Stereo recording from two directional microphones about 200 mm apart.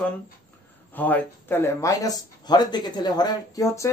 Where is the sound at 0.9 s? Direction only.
10° left (ahead or behind).